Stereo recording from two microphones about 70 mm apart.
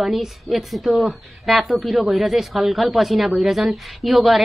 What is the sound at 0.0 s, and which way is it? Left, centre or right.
A woman's voice, centre.